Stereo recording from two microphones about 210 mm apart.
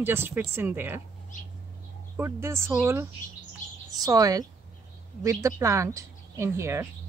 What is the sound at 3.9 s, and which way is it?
A woman's voice, 15° right (ahead or behind).